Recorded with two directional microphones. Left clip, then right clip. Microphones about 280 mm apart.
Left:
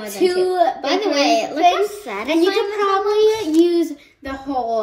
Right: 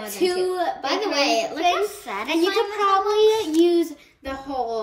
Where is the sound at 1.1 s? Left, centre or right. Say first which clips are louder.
Left 4 dB; left.